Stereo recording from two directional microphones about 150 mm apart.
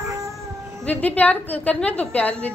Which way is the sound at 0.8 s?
10° left (ahead or behind).